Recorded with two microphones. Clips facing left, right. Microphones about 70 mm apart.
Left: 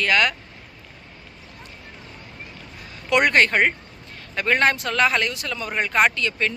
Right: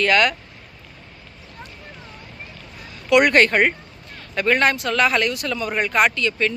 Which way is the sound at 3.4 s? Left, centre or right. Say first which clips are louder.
Right 2 dB; centre.